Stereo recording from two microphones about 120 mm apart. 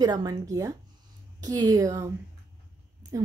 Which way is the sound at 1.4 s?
30° right (ahead or behind).